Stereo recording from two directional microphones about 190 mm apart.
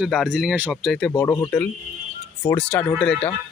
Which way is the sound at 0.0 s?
Centre (ahead or behind).